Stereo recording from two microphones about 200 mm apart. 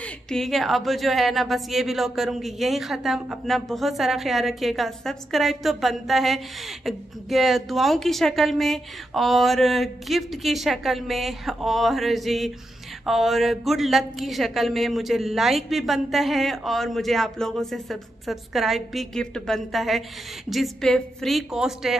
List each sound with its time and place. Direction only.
0.0 s a woman's voice: centre (ahead or behind)